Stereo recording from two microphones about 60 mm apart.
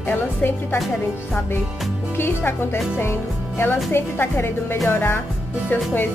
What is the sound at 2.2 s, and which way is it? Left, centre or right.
Music, left.